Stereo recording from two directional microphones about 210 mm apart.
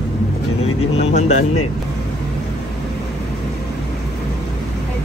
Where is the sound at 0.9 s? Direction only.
30° left (ahead or behind).